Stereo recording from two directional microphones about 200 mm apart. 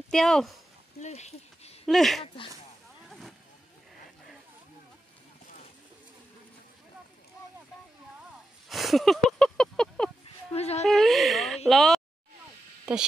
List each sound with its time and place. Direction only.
0.1 s speech: centre (ahead or behind)
0.9 s a sound: 35° left (ahead or behind)
1.9 s speech: centre (ahead or behind)
3.1 s vehicle: centre (ahead or behind)
8.6 s a sound: centre (ahead or behind)
10.5 s speech: 30° left (ahead or behind)
10.9 s speech: centre (ahead or behind)